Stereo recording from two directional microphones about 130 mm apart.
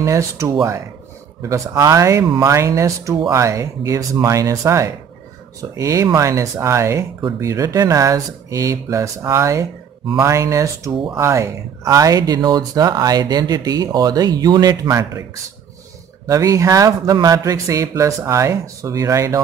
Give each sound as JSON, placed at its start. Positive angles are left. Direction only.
{"t": 0.0, "sound": "speech", "side_deg": -25}
{"t": 16.3, "sound": "speech", "side_deg": -25}